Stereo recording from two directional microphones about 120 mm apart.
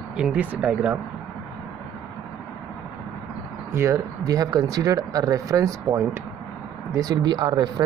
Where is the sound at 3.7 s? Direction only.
25° right (ahead or behind).